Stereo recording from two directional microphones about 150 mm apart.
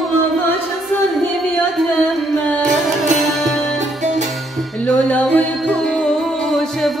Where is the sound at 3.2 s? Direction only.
Centre (ahead or behind).